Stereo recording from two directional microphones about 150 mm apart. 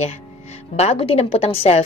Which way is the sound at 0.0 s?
45° left (ahead or behind).